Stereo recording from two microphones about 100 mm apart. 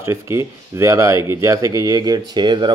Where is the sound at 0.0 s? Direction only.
25° right (ahead or behind).